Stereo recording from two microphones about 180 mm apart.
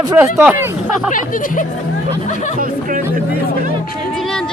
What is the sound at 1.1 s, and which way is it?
Speech, 50° left (ahead or behind).